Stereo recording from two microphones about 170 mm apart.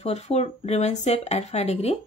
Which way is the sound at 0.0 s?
40° left (ahead or behind).